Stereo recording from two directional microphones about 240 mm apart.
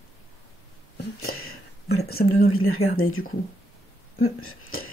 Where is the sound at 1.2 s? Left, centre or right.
Left.